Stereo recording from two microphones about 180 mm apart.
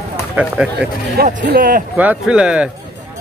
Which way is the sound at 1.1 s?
55° right (ahead or behind).